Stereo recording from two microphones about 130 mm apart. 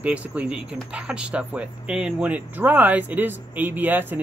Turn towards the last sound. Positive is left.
turn(degrees=-15)  # may be behind; listen again after turning